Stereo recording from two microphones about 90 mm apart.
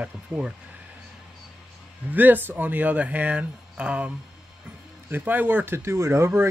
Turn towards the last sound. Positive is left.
turn(degrees=-25)  # may be behind; listen again after turning